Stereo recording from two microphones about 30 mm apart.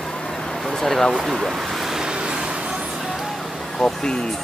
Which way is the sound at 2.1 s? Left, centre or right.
Right.